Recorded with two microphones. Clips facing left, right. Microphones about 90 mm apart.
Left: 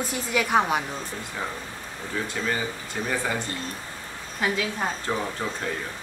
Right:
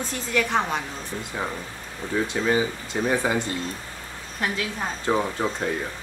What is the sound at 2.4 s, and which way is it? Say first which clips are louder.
Speech: right 6 dB; 20° right (ahead or behind).